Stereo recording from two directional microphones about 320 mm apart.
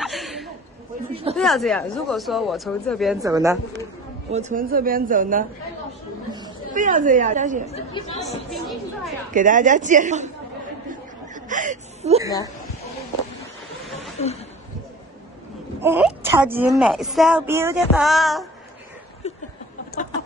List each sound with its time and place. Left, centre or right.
0.0 s a sound: centre
1.3 s a woman's voice: centre
3.2 s speech: centre
4.3 s speech: right
6.7 s speech: right
7.6 s speech: centre
8.5 s chatter: centre
9.3 s speech: right
10.9 s chuckle: right
13.4 s vehicle: centre
15.8 s a woman's voice: centre
19.2 s a sound: centre